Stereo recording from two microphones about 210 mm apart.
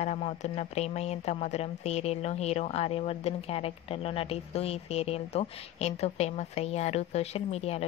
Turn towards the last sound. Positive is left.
turn(degrees=30)  # may be behind; listen again after turning